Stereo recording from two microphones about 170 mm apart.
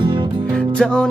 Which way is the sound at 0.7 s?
5° left (ahead or behind).